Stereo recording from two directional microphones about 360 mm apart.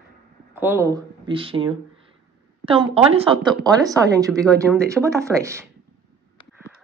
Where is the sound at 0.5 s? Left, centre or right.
Centre.